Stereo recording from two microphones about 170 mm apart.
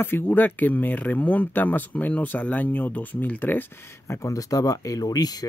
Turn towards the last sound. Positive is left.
turn(degrees=20)  # may be behind; listen again after turning